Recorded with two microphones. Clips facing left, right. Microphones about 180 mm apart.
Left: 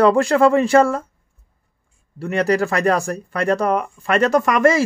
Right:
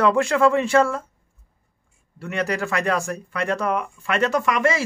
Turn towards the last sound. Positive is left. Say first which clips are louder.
# left 6 dB
turn(degrees=45)  # may be behind; listen again after turning